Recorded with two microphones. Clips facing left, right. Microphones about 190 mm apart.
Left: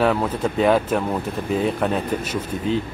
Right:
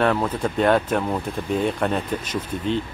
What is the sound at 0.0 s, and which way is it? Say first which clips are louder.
Speech: left 1 dB; 5° left (ahead or behind).